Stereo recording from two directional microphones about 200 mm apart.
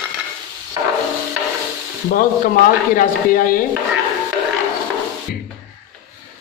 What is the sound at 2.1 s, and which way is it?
Speech, 45° left (ahead or behind).